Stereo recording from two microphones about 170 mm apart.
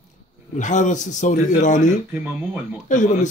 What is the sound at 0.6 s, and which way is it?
Speech, 45° left (ahead or behind).